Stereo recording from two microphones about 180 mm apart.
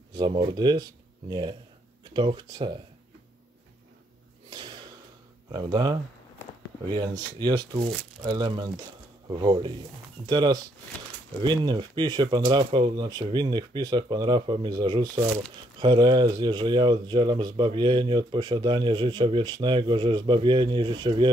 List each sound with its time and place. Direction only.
0.1 s speech: 25° right (ahead or behind)
4.5 s a sound: 25° right (ahead or behind)
5.5 s speech: 25° right (ahead or behind)